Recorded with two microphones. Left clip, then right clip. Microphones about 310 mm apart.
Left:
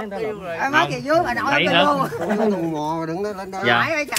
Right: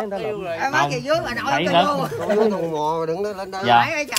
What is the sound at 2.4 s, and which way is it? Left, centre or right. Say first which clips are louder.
Speech: right 2 dB; centre.